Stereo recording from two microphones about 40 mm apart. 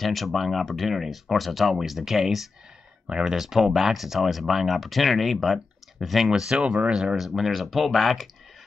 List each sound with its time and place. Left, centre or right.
0.0 s speech: centre
3.1 s speech: right
3.3 s speech: centre
6.5 s speech: right
6.9 s speech: centre
7.2 s speech: centre